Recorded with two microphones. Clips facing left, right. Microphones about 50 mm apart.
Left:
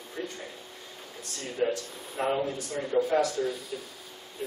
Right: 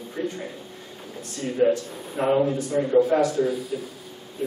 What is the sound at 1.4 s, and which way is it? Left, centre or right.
A man's voice, centre.